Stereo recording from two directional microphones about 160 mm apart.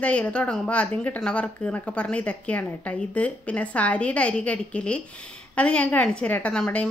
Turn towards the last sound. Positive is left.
turn(degrees=5)  # may be behind; listen again after turning